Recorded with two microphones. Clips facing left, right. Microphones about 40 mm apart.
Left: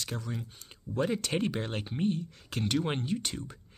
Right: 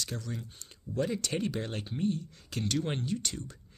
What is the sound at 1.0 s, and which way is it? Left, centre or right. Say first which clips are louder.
Speech: left 2 dB; left.